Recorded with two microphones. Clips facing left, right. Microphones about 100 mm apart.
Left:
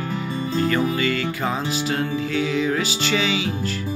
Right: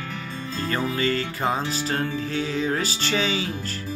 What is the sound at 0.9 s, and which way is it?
Music, 35° right (ahead or behind).